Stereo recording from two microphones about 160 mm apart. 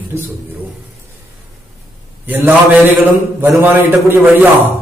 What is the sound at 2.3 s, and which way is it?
A man's voice, 10° right (ahead or behind).